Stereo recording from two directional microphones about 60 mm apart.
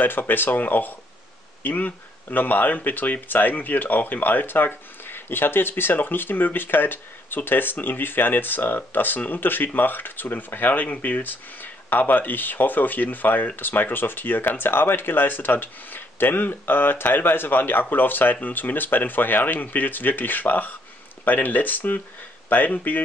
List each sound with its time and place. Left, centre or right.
0.0 s speech: left